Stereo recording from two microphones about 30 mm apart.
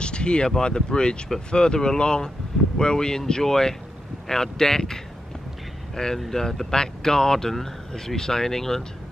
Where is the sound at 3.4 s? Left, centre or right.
Centre.